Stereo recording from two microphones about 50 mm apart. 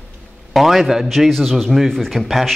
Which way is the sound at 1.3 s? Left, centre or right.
Centre.